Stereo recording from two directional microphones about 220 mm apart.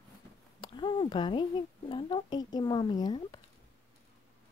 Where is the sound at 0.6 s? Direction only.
20° left (ahead or behind).